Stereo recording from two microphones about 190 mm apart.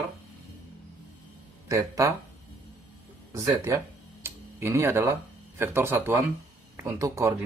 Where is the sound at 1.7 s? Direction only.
15° right (ahead or behind).